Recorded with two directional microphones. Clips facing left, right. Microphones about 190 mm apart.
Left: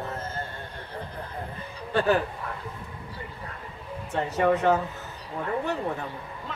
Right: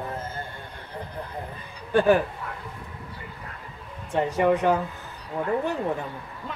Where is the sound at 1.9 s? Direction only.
15° right (ahead or behind).